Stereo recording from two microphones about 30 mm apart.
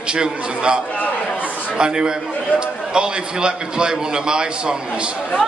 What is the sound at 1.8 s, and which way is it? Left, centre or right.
A man's voice, right.